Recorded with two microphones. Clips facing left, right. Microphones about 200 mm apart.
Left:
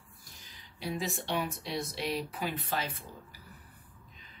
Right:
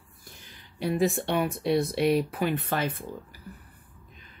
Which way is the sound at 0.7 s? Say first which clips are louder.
Right 10 dB; 55° right (ahead or behind).